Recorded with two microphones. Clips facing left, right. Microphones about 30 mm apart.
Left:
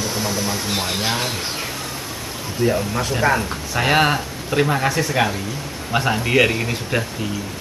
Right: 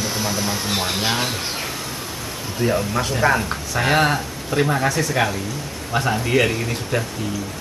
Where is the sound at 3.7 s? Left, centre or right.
Centre.